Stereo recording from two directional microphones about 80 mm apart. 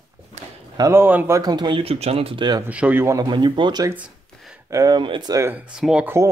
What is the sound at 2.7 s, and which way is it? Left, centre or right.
Speech, centre.